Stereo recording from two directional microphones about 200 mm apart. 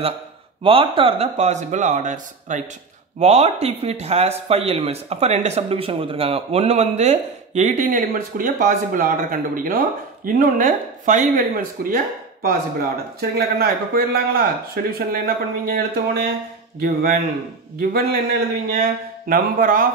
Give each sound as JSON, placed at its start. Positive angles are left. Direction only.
{"t": 0.7, "sound": "speech", "side_deg": -25}